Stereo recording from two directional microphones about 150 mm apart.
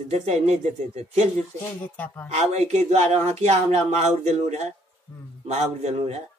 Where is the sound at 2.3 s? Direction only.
45° right (ahead or behind).